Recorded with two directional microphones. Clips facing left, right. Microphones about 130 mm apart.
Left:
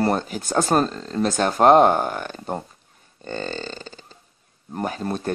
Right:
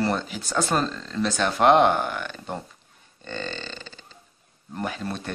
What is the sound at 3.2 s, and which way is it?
Burping, 40° left (ahead or behind).